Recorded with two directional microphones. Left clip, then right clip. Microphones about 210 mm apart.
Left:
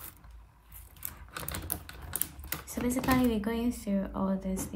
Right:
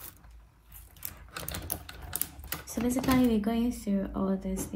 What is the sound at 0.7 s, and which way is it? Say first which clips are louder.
Typewriter: even; 10° left (ahead or behind).